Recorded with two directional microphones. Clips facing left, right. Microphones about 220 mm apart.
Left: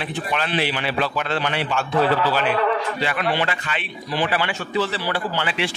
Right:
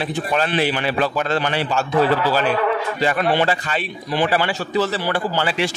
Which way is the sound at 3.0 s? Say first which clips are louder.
Right 4 dB; 40° right (ahead or behind).